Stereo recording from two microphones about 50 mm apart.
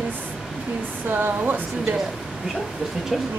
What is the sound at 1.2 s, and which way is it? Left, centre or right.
Speech, right.